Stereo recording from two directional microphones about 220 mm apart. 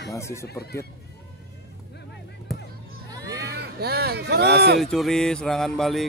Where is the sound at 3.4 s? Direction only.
50° right (ahead or behind).